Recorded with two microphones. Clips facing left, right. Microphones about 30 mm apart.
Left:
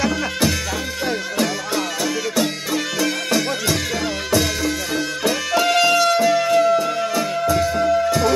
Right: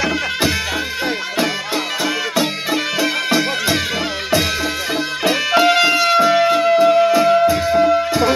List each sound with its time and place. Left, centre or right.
2.3 s music: right
4.9 s music: right